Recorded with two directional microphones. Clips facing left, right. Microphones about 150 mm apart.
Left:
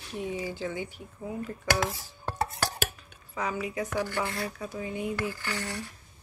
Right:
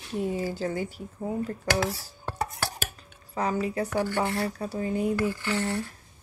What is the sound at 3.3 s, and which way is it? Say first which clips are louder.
Speech: right 4 dB; 35° right (ahead or behind).